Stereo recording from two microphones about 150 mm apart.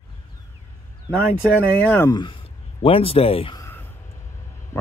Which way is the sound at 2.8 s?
40° left (ahead or behind).